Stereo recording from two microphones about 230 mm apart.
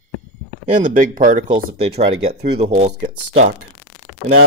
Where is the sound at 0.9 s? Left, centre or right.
Right.